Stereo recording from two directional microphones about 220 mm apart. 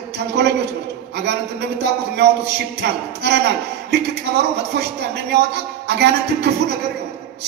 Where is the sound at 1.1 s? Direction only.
50° right (ahead or behind).